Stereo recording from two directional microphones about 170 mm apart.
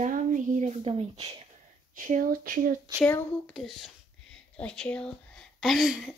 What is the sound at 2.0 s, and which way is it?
Speech, 50° right (ahead or behind).